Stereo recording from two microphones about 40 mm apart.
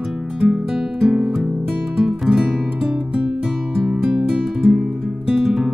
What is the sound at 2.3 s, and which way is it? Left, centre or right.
Music, right.